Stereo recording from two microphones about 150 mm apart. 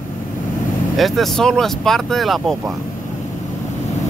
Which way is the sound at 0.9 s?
Centre (ahead or behind).